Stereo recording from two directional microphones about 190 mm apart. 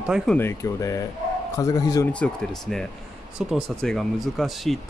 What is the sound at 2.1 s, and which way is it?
Speech, 5° left (ahead or behind).